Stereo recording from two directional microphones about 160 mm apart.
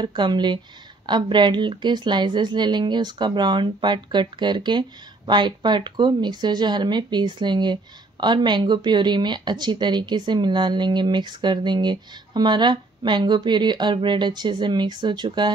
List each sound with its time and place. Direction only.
0.0 s a woman's voice: 30° right (ahead or behind)